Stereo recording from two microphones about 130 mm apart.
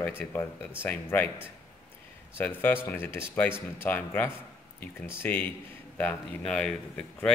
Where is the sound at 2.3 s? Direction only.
15° left (ahead or behind).